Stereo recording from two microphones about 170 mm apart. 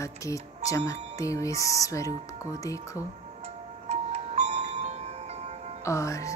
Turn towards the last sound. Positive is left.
turn(degrees=20)  # may be behind; listen again after turning